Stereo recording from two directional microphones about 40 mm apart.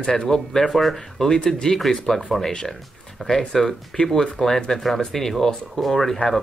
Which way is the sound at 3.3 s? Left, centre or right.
Centre.